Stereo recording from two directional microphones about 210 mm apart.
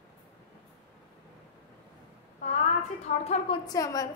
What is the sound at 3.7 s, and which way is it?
Speech, 15° left (ahead or behind).